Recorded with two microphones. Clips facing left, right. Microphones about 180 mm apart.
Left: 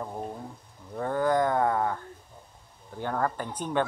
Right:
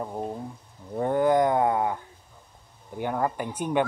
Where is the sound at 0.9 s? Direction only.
20° right (ahead or behind).